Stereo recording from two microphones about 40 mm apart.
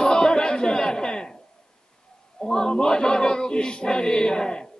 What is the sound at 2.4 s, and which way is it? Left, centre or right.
Speech, centre.